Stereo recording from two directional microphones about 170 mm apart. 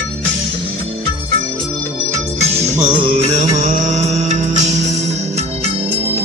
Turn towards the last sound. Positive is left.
turn(degrees=-45)  # may be behind; listen again after turning